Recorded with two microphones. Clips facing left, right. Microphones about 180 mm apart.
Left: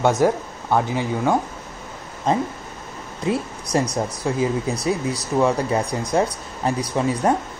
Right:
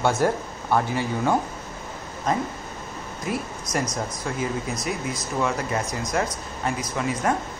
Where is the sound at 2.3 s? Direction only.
25° left (ahead or behind).